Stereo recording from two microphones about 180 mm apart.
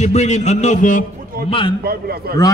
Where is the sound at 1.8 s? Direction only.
60° right (ahead or behind).